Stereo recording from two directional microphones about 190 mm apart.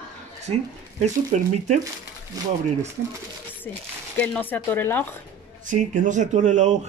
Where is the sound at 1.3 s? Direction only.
40° right (ahead or behind).